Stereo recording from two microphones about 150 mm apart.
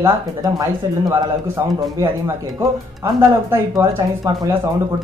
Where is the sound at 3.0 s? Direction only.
20° right (ahead or behind).